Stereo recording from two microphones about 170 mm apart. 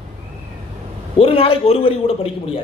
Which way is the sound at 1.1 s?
35° left (ahead or behind).